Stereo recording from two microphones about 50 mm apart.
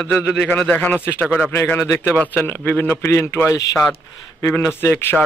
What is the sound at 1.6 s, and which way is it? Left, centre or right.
Speech, left.